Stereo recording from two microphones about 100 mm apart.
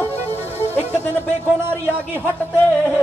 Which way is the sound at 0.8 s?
20° left (ahead or behind).